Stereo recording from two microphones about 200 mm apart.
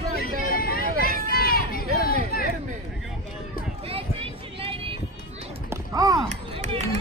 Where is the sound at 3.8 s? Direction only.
30° right (ahead or behind).